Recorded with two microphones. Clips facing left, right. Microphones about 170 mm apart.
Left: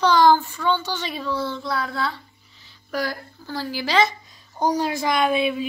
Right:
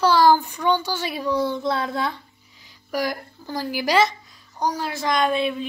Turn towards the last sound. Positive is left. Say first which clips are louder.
# left 1 dB
turn(degrees=5)  # may be behind; listen again after turning